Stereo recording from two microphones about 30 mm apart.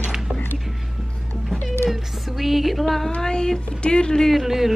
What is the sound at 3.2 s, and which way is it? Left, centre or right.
Child singing, left.